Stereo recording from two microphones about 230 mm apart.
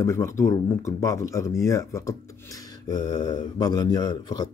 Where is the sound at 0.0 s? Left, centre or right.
Centre.